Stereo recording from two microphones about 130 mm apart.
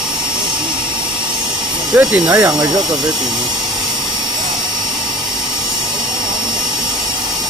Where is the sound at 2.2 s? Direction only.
25° right (ahead or behind).